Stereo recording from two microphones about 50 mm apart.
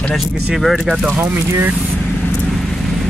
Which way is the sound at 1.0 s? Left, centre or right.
Right.